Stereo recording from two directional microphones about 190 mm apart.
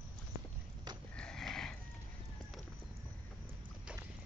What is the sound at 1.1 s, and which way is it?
Sniff, 5° left (ahead or behind).